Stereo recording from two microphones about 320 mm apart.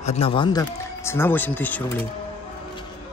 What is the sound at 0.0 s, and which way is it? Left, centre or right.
Speech, centre.